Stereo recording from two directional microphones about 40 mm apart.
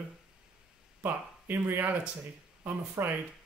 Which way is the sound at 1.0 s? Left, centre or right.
Right.